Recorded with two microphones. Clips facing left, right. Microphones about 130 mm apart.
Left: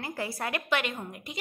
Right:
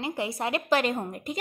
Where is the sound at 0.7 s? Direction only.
40° right (ahead or behind).